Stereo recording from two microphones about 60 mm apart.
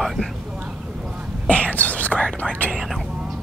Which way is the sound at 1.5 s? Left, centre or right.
Left.